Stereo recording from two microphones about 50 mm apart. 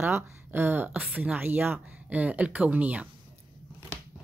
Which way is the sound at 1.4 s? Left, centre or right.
Right.